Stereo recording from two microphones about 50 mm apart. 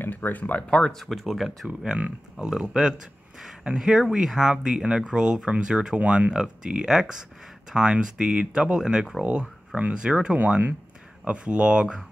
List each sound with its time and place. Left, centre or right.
0.0 s speech: left
0.9 s speech: centre
1.7 s speech: centre
10.0 s speech: centre
10.3 s speech: right
11.2 s speech: right